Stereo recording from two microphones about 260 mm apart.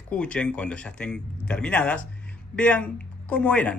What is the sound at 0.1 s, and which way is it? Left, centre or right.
Speech, centre.